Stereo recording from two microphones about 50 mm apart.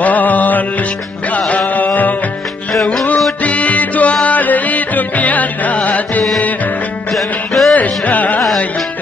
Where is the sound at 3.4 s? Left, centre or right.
Left.